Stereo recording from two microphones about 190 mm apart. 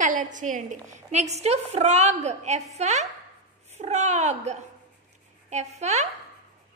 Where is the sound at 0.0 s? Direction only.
40° right (ahead or behind).